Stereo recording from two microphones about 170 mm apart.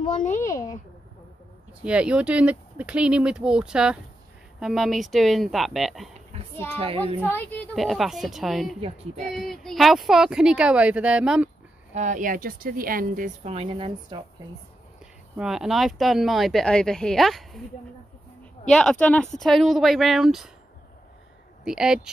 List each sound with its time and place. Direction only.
0.4 s speech: 20° left (ahead or behind)
1.9 s speech: 5° right (ahead or behind)
6.8 s speech: 35° right (ahead or behind)
7.2 s speech: 10° left (ahead or behind)
7.7 s speech: centre (ahead or behind)
8.8 s speech: 40° right (ahead or behind)
9.3 s speech: centre (ahead or behind)
11.9 s a woman's voice: 45° right (ahead or behind)
15.3 s speech: 5° right (ahead or behind)
18.7 s speech: 5° left (ahead or behind)
21.6 s speech: 5° right (ahead or behind)